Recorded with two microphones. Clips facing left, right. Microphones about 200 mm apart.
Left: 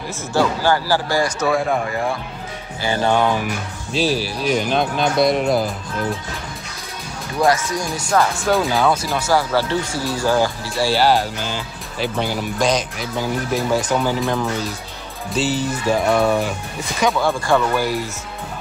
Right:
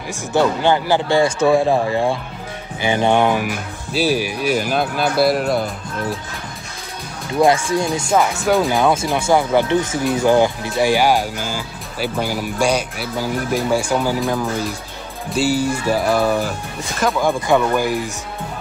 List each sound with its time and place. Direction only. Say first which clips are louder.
0.1 s a man's voice: right 2 dB; 20° right (ahead or behind); by 5.7 s centre (ahead or behind)
7.3 s a man's voice: right 3 dB; 25° right (ahead or behind); by 16.5 s centre (ahead or behind)
17.2 s speech: right 5 dB; 15° right (ahead or behind)